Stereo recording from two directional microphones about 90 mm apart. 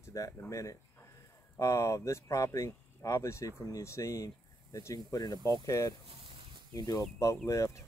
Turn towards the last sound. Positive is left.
turn(degrees=40)  # may be behind; listen again after turning